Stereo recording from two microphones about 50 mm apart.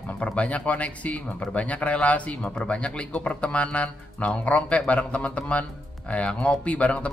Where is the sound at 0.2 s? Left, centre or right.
Left.